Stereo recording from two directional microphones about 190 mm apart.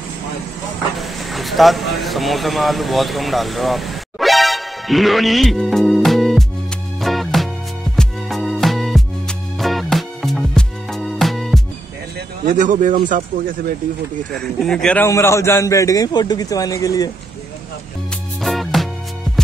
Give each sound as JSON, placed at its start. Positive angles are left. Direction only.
{"t": 0.9, "sound": "speech", "side_deg": 0}
{"t": 7.0, "sound": "music", "side_deg": 0}
{"t": 12.4, "sound": "speech", "side_deg": -40}
{"t": 14.3, "sound": "a man's voice", "side_deg": 0}
{"t": 18.4, "sound": "music", "side_deg": 0}